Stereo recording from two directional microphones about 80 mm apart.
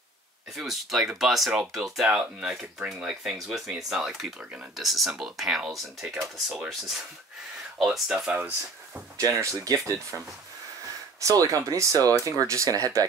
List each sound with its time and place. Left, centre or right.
0.6 s speech: centre
7.8 s speech: centre
8.3 s speech: centre
9.2 s speech: right